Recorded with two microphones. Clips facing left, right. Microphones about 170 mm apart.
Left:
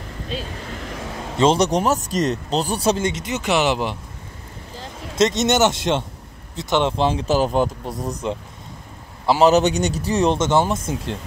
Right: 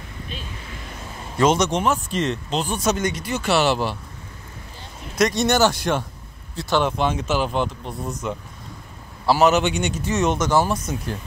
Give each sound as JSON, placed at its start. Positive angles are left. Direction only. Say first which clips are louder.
{"t": 0.7, "sound": "vehicle", "louder": "left 6 dB", "side_deg": 70}
{"t": 1.4, "sound": "speech", "louder": "left 2 dB", "side_deg": 35}
{"t": 5.1, "sound": "speech", "louder": "left 1 dB", "side_deg": 20}
{"t": 9.2, "sound": "a man's voice", "louder": "left 1 dB", "side_deg": 20}
{"t": 9.5, "sound": "speech", "louder": "left 4 dB", "side_deg": 40}